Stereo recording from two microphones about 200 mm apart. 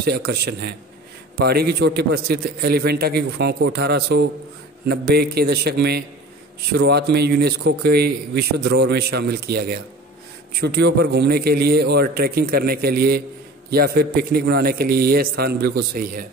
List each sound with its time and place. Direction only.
0.3 s a man's voice: 50° right (ahead or behind)